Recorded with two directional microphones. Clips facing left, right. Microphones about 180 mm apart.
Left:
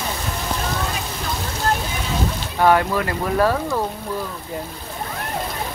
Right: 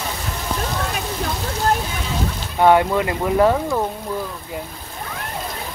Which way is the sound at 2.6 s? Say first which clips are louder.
Right 2 dB; 20° right (ahead or behind).